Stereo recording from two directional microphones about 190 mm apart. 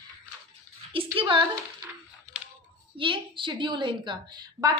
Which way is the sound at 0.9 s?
25° right (ahead or behind).